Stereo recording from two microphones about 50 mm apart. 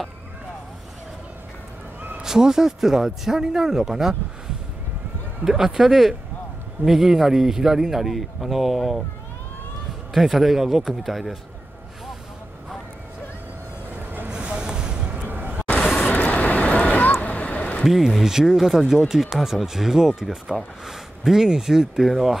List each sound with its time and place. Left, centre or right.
2.2 s speech: centre
5.4 s speech: centre
10.1 s speech: centre
13.9 s vehicle: right
14.3 s vehicle: centre
15.2 s a sound: right
16.0 s vehicle: left
17.2 s a sound: left
17.8 s speech: centre